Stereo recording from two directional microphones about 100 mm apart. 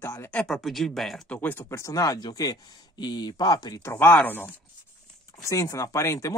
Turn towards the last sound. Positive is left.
turn(degrees=30)  # may be behind; listen again after turning